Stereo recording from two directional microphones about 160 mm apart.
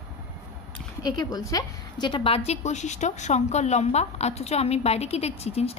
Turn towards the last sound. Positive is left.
turn(degrees=40)  # may be behind; listen again after turning